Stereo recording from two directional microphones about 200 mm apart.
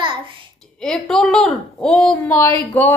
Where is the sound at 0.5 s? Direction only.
5° left (ahead or behind).